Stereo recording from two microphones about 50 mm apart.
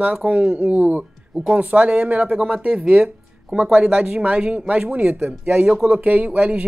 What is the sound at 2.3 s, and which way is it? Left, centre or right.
Speech, centre.